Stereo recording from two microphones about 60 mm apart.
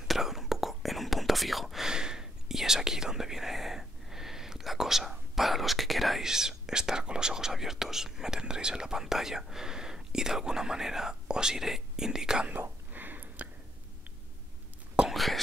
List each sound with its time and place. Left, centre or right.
0.1 s whispering: centre
12.5 s whispering: right
15.0 s whispering: centre